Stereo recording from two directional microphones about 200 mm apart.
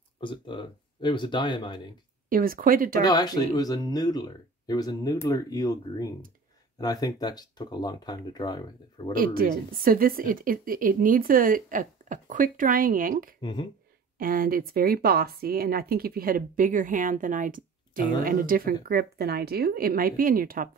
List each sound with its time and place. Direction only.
0.2 s speech: 25° left (ahead or behind)
2.2 s speech: 45° right (ahead or behind)
3.0 s speech: 20° left (ahead or behind)
9.1 s speech: 45° right (ahead or behind)
13.4 s speech: 20° left (ahead or behind)
14.1 s speech: 45° right (ahead or behind)